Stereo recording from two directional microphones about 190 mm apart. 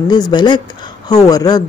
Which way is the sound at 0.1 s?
25° left (ahead or behind).